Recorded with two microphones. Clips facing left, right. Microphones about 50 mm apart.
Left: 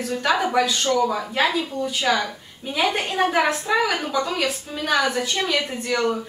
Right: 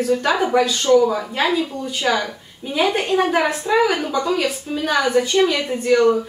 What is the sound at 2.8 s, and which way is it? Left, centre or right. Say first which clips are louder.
Speech: right 3 dB; centre.